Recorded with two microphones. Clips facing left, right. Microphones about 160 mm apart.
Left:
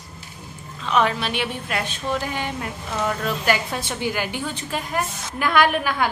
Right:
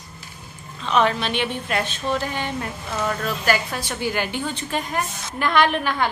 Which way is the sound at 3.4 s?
20° left (ahead or behind).